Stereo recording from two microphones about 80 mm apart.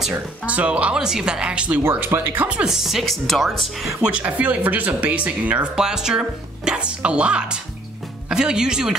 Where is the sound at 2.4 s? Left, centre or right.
Centre.